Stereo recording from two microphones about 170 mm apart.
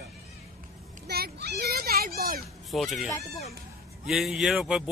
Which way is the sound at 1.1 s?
70° right (ahead or behind).